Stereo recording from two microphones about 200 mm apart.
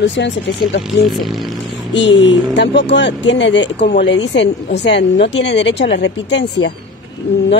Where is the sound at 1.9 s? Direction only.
60° left (ahead or behind).